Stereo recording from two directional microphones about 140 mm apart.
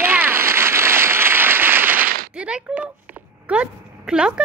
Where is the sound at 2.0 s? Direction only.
90° right.